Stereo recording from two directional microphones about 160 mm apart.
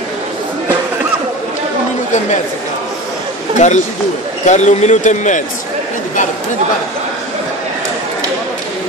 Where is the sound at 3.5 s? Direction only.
50° left (ahead or behind).